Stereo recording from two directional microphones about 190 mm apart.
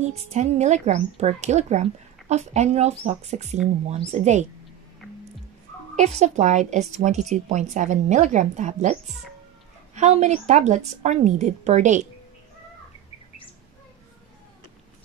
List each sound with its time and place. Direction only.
0.0 s speech: 35° right (ahead or behind)
5.9 s speech: 35° right (ahead or behind)